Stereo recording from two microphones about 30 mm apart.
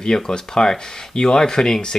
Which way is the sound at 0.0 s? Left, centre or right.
Left.